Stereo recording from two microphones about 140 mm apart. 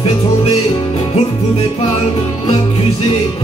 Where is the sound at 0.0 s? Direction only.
45° left (ahead or behind).